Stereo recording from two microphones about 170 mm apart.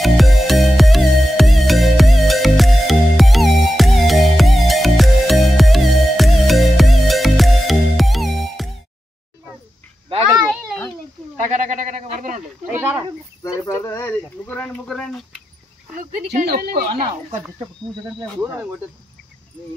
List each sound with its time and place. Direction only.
0.0 s music: centre (ahead or behind)
10.0 s a sound: 30° right (ahead or behind)
10.5 s a sound: centre (ahead or behind)
11.5 s sheep: 45° right (ahead or behind)
12.2 s a sound: 45° right (ahead or behind)
12.6 s snake: 5° right (ahead or behind)
13.4 s speech: 20° left (ahead or behind)
16.0 s speech: 55° right (ahead or behind)
18.4 s speech: 10° right (ahead or behind)